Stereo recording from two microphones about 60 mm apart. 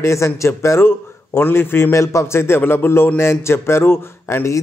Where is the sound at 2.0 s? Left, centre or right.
Left.